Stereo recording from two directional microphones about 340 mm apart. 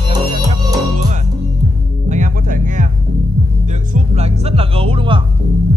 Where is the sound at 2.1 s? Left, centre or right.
Right.